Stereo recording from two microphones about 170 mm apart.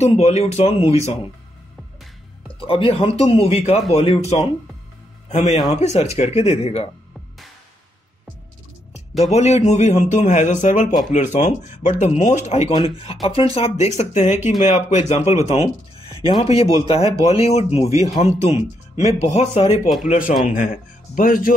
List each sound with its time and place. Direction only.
0.0 s speech: 40° left (ahead or behind)
2.6 s speech: 30° left (ahead or behind)
5.3 s speech: 40° left (ahead or behind)
9.2 s a man's voice: 40° left (ahead or behind)
20.1 s a man's voice: 50° left (ahead or behind)